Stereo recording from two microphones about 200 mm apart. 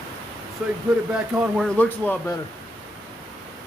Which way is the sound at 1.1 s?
5° right (ahead or behind).